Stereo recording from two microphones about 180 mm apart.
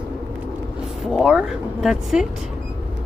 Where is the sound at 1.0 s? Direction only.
Centre (ahead or behind).